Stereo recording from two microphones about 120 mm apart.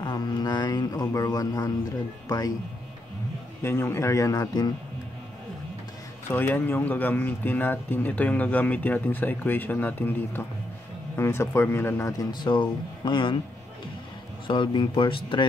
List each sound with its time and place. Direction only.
0.0 s mantra: 35° left (ahead or behind)
2.2 s speech: 35° left (ahead or behind)
3.6 s speech: 20° left (ahead or behind)
6.3 s speech: 15° left (ahead or behind); by 13.4 s 40° left (ahead or behind)
14.5 s speech: 40° left (ahead or behind)